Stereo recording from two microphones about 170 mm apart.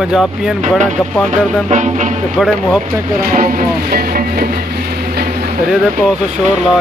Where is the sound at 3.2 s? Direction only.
55° right (ahead or behind).